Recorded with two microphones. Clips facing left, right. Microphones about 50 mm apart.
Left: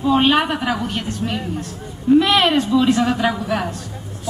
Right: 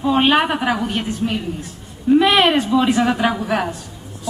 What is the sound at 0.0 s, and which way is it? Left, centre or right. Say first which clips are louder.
A woman's voice: even; centre.